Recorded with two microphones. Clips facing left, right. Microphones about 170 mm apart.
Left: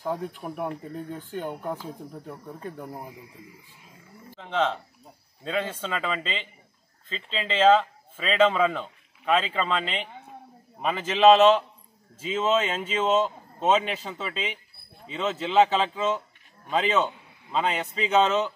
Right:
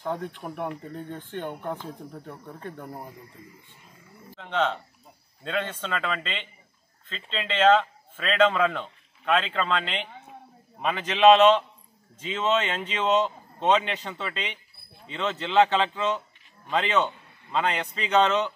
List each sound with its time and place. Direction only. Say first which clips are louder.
0.0 s speech: left 1 dB; 5° left (ahead or behind)
4.4 s a man's voice: even; 5° left (ahead or behind)